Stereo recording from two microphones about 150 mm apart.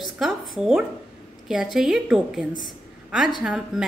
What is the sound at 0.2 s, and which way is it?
A woman's voice, 5° right (ahead or behind).